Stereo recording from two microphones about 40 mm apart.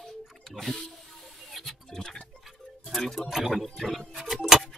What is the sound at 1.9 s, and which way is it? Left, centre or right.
Music, centre.